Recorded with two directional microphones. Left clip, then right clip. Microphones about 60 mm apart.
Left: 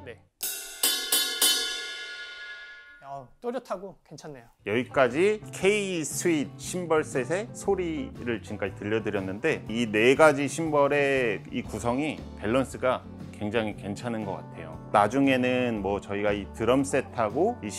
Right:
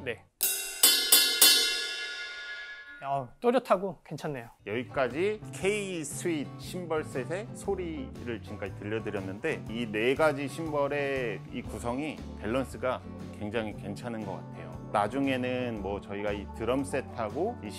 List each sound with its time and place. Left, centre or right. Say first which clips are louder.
0.8 s music: right 3 dB; right
3.1 s speech: right 7 dB; left
4.6 s speech: left 7 dB; centre
6.2 s speech: left 6 dB; centre
7.3 s speech: left 6 dB; centre
11.7 s speech: left 5 dB; centre
14.9 s speech: left 6 dB; centre